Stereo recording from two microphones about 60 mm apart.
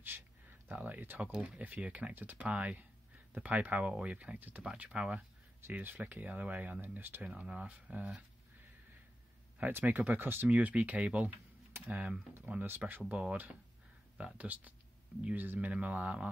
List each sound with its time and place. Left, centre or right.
0.0 s a sound: right
1.6 s speech: right
4.7 s speech: centre
5.6 s speech: right
7.2 s speech: right
9.6 s speech: right
10.5 s speech: right
12.4 s speech: right
13.1 s speech: right